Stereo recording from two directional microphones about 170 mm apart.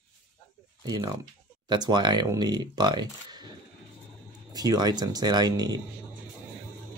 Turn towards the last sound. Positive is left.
turn(degrees=-25)  # may be behind; listen again after turning